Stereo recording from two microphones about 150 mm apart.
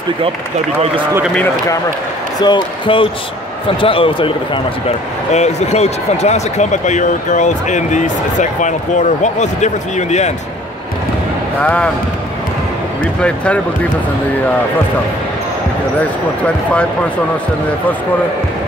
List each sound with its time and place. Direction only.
2.4 s speech: 35° left (ahead or behind)
4.8 s speech: 50° left (ahead or behind)
11.6 s speech: 10° left (ahead or behind)